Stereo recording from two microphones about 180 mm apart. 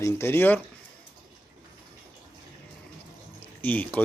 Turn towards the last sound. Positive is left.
turn(degrees=10)  # may be behind; listen again after turning